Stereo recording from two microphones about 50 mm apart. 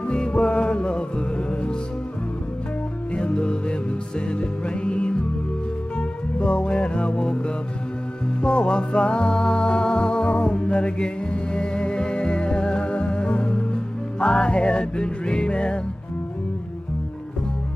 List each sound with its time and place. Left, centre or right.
0.0 s music: centre
3.2 s music: left